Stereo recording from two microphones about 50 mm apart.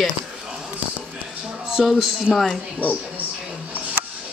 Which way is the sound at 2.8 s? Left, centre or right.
Left.